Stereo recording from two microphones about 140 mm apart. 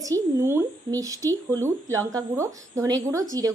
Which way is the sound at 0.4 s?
20° right (ahead or behind).